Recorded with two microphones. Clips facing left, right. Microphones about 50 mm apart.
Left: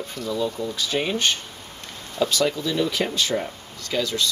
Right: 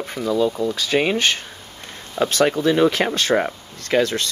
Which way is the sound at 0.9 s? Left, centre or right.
Right.